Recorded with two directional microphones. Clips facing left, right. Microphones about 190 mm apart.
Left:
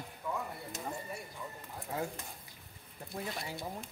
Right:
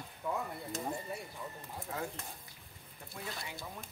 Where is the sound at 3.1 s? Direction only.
35° left (ahead or behind).